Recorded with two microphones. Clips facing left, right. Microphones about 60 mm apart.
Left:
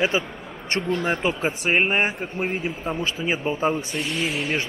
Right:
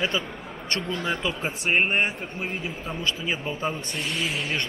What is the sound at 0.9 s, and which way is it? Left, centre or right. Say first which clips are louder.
Speech: left 4 dB; left.